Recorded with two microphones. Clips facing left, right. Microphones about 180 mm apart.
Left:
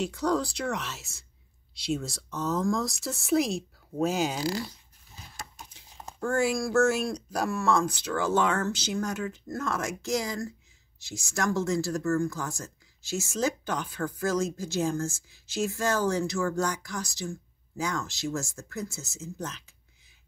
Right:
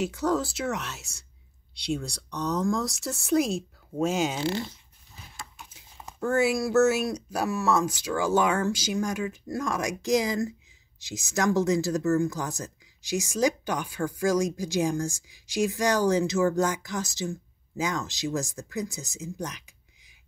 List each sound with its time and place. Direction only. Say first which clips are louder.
0.0 s speech: right 1 dB; 5° right (ahead or behind)
4.4 s speech: right 2 dB; 25° right (ahead or behind)
5.7 s speech: left 1 dB; 5° right (ahead or behind)